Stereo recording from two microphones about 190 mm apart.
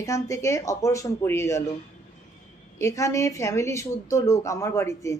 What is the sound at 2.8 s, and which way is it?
A woman's voice, 15° left (ahead or behind).